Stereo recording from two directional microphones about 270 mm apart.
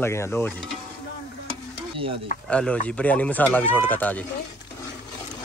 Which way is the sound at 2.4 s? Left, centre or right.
Centre.